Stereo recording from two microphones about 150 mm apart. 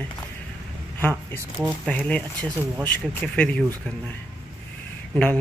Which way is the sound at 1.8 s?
5° left (ahead or behind).